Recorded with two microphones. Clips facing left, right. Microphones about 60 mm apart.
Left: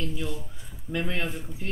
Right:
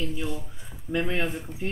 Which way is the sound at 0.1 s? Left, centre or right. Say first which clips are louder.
Right 1 dB; centre.